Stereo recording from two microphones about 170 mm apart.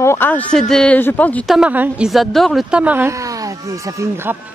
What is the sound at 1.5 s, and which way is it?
A woman's voice, 5° right (ahead or behind).